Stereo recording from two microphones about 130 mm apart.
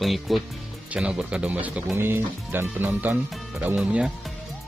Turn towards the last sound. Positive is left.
turn(degrees=-5)  # may be behind; listen again after turning